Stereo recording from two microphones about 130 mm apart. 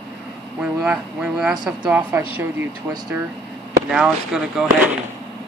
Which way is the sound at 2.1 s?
20° right (ahead or behind).